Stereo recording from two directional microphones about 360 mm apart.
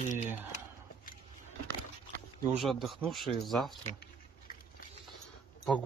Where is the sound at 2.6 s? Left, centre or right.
Centre.